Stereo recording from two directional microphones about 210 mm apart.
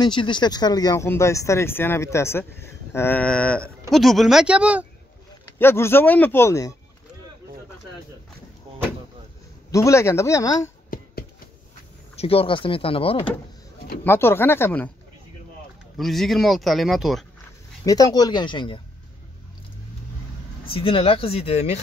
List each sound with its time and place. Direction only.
0.0 s speech: 20° left (ahead or behind); by 4.8 s 5° right (ahead or behind)
5.6 s speech: 10° left (ahead or behind)
9.7 s speech: 15° left (ahead or behind)
12.2 s speech: 25° left (ahead or behind)
14.0 s speech: 10° left (ahead or behind)
16.0 s speech: centre (ahead or behind)
17.8 s speech: 15° left (ahead or behind)
20.6 s speech: 25° left (ahead or behind)